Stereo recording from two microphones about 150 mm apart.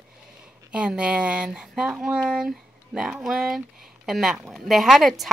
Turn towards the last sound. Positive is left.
turn(degrees=0)  # may be behind; listen again after turning